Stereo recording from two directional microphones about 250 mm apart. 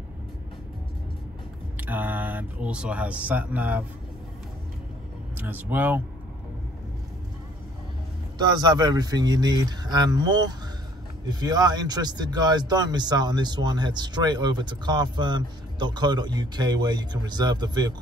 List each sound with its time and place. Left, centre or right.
1.8 s speech: centre
5.4 s speech: centre
8.4 s speech: centre